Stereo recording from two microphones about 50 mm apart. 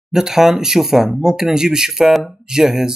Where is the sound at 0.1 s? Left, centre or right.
Centre.